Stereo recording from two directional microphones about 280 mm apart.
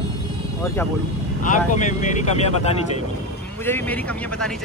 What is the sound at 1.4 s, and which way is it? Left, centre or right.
Speech, left.